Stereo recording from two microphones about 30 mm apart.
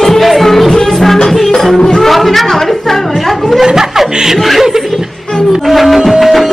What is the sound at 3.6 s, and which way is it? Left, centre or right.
Chuckle, centre.